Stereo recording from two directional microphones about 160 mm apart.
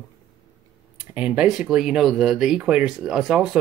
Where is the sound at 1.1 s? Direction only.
10° right (ahead or behind).